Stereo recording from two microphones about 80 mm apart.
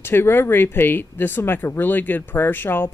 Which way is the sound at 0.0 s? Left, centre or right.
Left.